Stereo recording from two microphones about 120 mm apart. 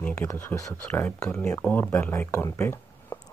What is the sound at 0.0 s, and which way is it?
Speech, 20° left (ahead or behind).